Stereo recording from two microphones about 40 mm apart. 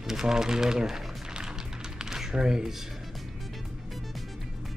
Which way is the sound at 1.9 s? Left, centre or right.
Centre.